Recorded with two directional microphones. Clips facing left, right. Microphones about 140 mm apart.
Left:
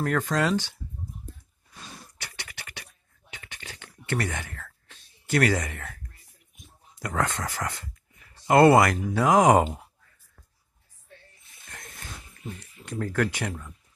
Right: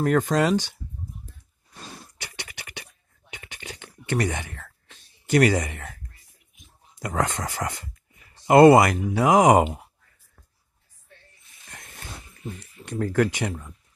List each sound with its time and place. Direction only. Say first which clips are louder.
0.0 s speech: right 4 dB; 20° right (ahead or behind)
1.7 s a sound: right 3 dB; 15° right (ahead or behind)
7.0 s speech: right 2 dB; 15° right (ahead or behind)
13.0 s speech: right 4 dB; 15° right (ahead or behind)